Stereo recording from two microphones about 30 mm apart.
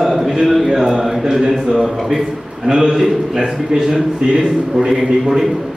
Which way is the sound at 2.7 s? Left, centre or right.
Centre.